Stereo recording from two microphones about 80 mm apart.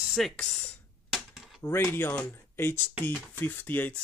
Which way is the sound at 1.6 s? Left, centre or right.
Left.